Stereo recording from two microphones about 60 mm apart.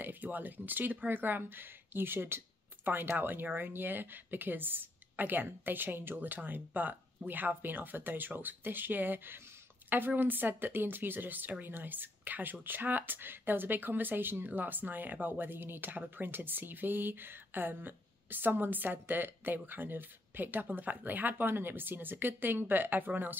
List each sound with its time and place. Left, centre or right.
0.0 s speech: right